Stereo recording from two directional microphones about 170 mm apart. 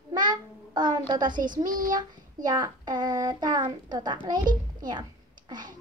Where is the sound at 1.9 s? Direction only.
25° right (ahead or behind).